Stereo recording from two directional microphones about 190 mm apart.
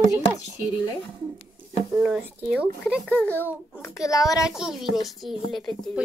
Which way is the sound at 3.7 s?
15° left (ahead or behind).